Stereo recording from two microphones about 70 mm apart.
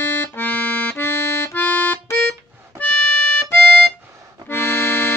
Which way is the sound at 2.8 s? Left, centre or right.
Left.